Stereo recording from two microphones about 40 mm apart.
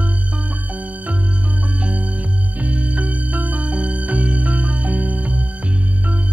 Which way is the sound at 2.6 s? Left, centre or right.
Right.